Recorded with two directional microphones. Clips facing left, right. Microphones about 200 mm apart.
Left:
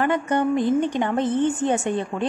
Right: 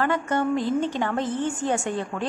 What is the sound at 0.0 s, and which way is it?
A woman's voice, 20° left (ahead or behind).